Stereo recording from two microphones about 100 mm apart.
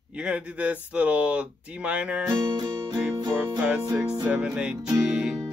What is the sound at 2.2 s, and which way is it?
Music, 45° right (ahead or behind).